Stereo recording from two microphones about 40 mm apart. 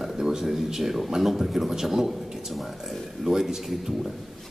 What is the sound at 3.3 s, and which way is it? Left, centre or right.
Speech, centre.